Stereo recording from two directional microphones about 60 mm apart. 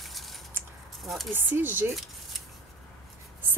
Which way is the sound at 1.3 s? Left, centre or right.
Right.